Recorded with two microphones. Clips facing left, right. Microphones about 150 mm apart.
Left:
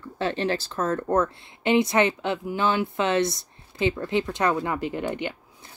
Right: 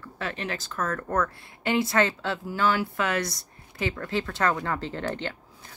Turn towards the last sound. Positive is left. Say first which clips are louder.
# left 3 dB
turn(degrees=15)  # may be behind; listen again after turning